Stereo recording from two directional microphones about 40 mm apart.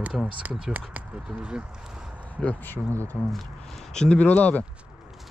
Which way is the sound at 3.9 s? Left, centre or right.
Centre.